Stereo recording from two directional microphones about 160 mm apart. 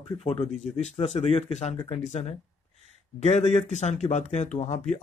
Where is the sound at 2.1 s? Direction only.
45° left (ahead or behind).